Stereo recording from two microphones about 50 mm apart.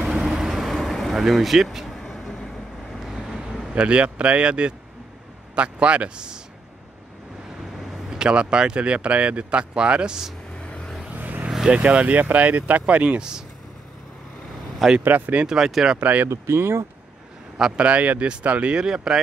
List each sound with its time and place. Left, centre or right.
0.0 s vehicle: centre
3.7 s speech: right
7.7 s a sound: centre
8.2 s speech: centre
10.6 s vehicle: left
11.1 s vehicle: right
11.7 s speech: right
15.0 s speech: right
15.4 s speech: centre
16.0 s speech: right
16.3 s speech: right
17.6 s speech: centre
17.8 s speech: right
19.1 s speech: centre